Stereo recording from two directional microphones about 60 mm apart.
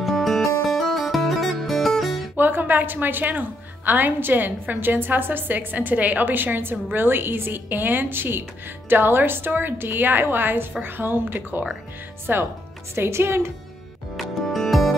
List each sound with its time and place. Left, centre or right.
0.0 s music: centre
2.3 s a woman's voice: right
14.1 s music: centre